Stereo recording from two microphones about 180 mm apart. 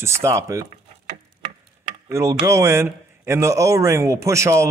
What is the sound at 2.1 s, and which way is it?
Speech, 15° right (ahead or behind).